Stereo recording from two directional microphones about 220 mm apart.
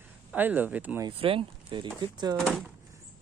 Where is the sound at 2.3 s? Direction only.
5° left (ahead or behind).